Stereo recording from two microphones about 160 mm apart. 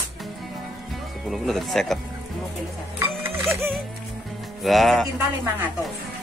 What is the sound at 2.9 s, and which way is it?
Music, 15° right (ahead or behind).